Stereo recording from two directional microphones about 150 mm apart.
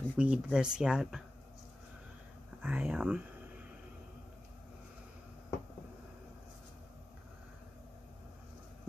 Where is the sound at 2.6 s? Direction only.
10° right (ahead or behind).